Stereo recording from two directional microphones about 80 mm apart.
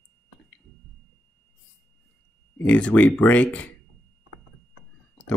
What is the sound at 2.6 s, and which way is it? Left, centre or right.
Speech, centre.